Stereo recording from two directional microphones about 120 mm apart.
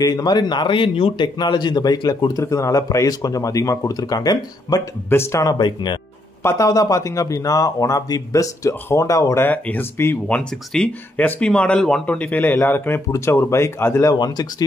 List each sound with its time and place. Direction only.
0.0 s a man's voice: 35° left (ahead or behind)
5.1 s a man's voice: 20° left (ahead or behind); by 5.9 s 40° left (ahead or behind)
6.4 s speech: 25° left (ahead or behind)
9.5 s speech: 15° left (ahead or behind)
10.2 s speech: 10° left (ahead or behind)
14.1 s a man's voice: 35° left (ahead or behind)